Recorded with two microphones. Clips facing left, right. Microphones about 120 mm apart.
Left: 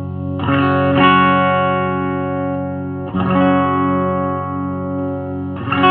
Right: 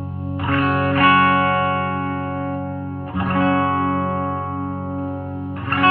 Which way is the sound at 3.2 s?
20° left (ahead or behind).